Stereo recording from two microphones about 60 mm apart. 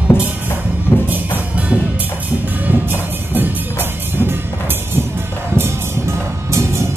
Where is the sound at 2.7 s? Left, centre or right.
Right.